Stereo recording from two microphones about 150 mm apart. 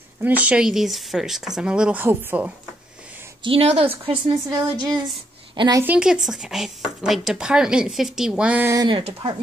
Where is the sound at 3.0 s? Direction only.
10° right (ahead or behind).